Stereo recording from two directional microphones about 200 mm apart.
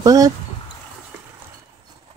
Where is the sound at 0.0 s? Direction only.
15° right (ahead or behind).